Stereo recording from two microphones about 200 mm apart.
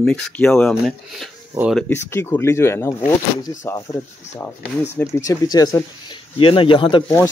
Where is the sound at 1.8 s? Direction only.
10° left (ahead or behind).